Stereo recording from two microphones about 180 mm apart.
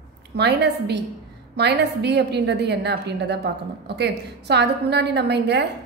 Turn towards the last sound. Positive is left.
turn(degrees=-70)  # may be behind; listen again after turning